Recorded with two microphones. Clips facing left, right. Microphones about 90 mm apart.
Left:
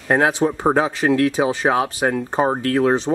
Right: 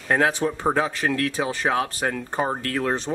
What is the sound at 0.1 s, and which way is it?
Speech, 20° left (ahead or behind).